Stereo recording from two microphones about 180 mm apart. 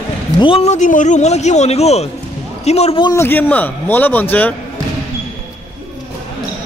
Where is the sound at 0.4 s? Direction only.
30° left (ahead or behind).